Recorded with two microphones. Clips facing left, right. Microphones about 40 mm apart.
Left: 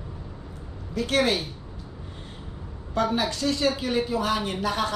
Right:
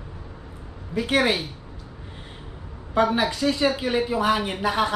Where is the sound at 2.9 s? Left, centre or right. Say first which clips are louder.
Right 4 dB; centre.